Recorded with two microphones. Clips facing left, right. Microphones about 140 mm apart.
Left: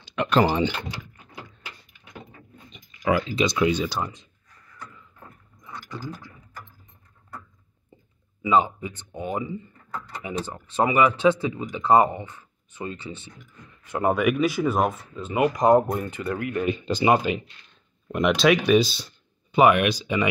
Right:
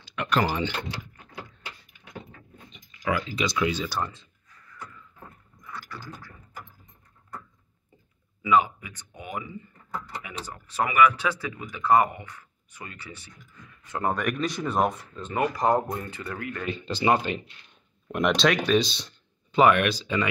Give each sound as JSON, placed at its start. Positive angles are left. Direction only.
{"t": 0.0, "sound": "door", "side_deg": 25}
{"t": 2.7, "sound": "speech", "side_deg": 25}
{"t": 5.6, "sound": "gears", "side_deg": 20}
{"t": 8.4, "sound": "speech", "side_deg": 25}
{"t": 18.0, "sound": "speech", "side_deg": 0}